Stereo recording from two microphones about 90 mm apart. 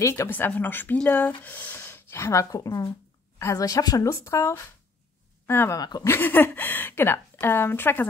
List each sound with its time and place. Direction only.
0.1 s a woman's voice: 20° left (ahead or behind)
5.8 s speech: 50° left (ahead or behind)
6.0 s speech: 25° left (ahead or behind)